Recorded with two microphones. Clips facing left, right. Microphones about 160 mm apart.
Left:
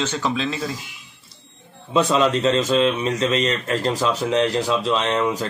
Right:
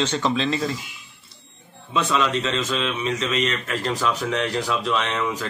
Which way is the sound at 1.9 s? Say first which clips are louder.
Left 4 dB; 30° left (ahead or behind).